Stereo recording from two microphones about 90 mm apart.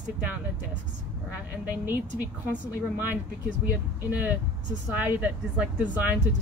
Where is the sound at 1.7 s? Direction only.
20° right (ahead or behind).